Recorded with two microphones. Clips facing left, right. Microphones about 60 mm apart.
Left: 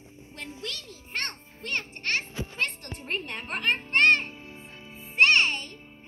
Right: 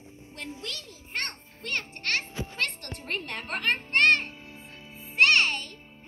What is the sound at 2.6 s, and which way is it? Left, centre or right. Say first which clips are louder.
Music: even; right.